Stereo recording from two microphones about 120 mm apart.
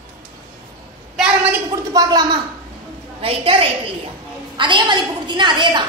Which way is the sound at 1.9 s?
35° right (ahead or behind).